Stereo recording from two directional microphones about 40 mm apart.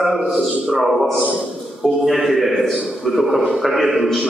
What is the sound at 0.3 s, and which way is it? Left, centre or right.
A man's voice, centre.